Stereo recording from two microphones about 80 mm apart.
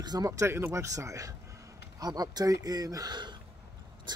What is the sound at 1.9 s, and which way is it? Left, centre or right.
Speech, right.